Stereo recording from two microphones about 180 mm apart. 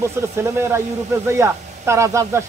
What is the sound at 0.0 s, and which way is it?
Speech, 15° right (ahead or behind).